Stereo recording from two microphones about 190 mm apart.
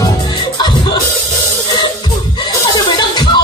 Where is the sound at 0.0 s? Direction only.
25° left (ahead or behind).